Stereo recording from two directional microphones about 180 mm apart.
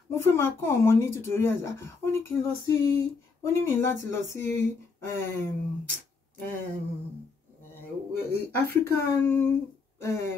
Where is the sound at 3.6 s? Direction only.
15° left (ahead or behind).